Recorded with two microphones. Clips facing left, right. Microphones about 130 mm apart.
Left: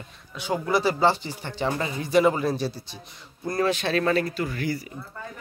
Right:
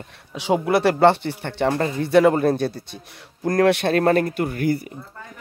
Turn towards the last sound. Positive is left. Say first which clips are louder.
# right 6 dB
turn(degrees=-55)  # may be behind; listen again after turning